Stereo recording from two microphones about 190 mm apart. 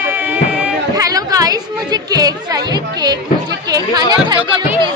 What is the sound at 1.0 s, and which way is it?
A woman's voice, 20° right (ahead or behind).